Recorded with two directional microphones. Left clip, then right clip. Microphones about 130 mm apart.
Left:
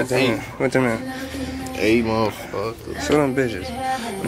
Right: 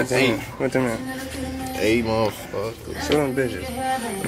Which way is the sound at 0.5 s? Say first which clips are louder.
Left 3 dB; 30° left (ahead or behind).